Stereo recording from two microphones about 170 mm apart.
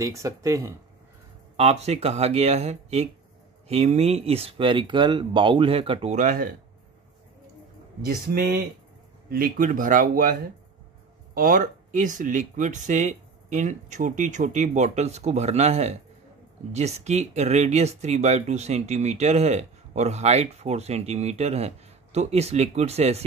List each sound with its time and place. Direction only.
0.0 s speech: 20° right (ahead or behind)
1.6 s speech: 40° right (ahead or behind); by 6.5 s 55° right (ahead or behind)
8.0 s speech: 60° right (ahead or behind)
11.3 s speech: 55° right (ahead or behind)